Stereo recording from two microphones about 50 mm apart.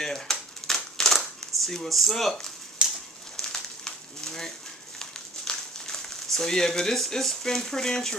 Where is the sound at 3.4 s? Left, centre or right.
Centre.